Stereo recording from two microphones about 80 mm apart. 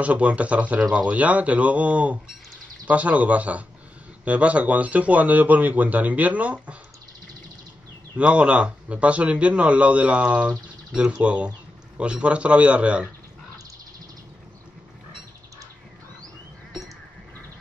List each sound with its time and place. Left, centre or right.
0.0 s a man's voice: centre
8.2 s a man's voice: centre